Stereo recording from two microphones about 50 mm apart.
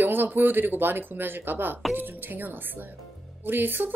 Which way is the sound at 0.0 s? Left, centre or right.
Right.